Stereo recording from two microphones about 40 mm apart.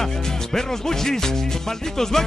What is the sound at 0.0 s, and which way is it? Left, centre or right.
Music, centre.